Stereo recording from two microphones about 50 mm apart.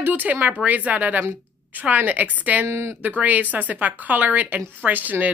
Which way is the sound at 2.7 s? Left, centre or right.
Right.